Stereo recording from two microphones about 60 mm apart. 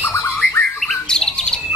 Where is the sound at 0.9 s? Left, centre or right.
Centre.